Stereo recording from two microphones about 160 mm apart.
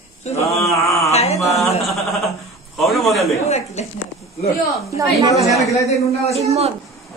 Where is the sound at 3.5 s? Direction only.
45° left (ahead or behind).